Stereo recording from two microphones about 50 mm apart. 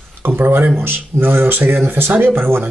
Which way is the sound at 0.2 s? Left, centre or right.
Right.